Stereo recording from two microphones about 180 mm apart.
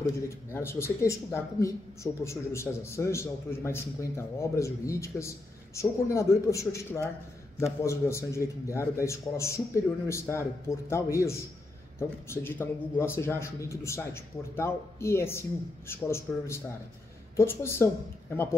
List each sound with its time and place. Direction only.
0.0 s a man's voice: 15° left (ahead or behind)